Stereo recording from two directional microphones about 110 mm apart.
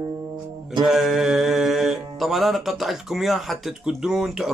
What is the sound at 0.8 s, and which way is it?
Music, centre (ahead or behind).